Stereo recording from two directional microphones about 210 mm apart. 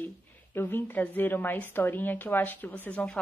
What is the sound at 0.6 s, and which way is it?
A woman's voice, 10° left (ahead or behind).